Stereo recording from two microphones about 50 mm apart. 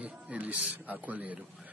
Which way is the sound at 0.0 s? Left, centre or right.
Right.